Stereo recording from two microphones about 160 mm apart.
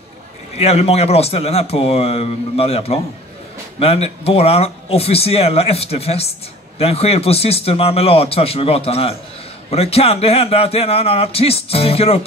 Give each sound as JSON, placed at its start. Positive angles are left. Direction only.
{"t": 0.6, "sound": "a man's voice", "side_deg": 40}